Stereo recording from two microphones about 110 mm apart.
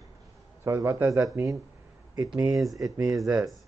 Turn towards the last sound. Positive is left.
turn(degrees=-30)  # may be behind; listen again after turning